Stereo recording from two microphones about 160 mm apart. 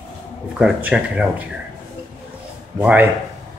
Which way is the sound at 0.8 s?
5° right (ahead or behind).